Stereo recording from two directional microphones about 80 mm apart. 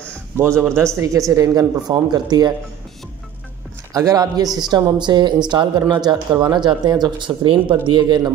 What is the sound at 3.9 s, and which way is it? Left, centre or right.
Speech, right.